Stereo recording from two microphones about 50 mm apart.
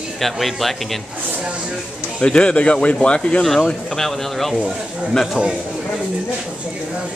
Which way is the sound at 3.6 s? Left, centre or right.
Centre.